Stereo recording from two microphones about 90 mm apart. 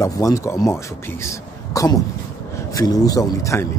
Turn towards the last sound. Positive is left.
turn(degrees=35)  # may be behind; listen again after turning